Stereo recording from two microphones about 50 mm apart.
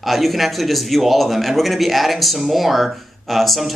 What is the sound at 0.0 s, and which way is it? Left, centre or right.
Speech, centre.